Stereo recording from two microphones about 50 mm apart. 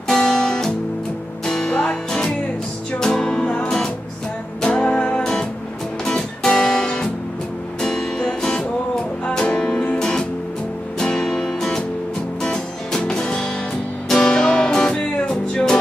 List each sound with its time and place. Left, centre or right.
0.1 s music: centre